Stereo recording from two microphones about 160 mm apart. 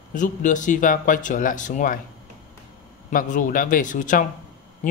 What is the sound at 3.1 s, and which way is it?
Speech, 55° left (ahead or behind).